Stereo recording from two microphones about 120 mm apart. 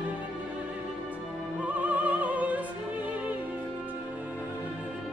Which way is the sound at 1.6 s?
10° right (ahead or behind).